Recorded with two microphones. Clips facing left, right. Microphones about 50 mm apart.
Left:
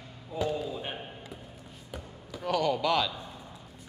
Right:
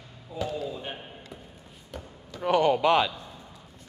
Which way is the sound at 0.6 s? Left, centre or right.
Centre.